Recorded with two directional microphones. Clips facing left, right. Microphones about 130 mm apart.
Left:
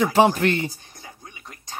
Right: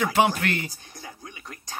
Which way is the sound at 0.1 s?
35° left (ahead or behind).